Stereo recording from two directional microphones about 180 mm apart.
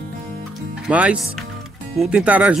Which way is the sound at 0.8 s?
5° right (ahead or behind).